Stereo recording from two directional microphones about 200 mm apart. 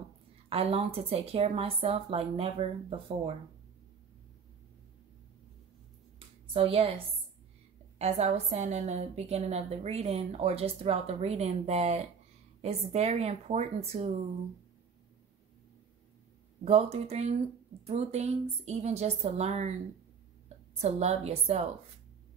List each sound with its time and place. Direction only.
0.5 s a woman's voice: 30° right (ahead or behind)
6.1 s a sound: 30° right (ahead or behind)
8.0 s a woman's voice: 35° right (ahead or behind)
16.6 s a woman's voice: 30° right (ahead or behind)
20.7 s a woman's voice: 30° right (ahead or behind)